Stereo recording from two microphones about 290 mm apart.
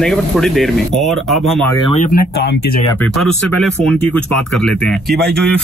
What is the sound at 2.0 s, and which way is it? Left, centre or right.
Speech, left.